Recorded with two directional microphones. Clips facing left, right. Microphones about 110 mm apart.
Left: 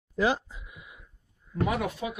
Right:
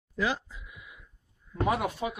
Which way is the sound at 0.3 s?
30° left (ahead or behind).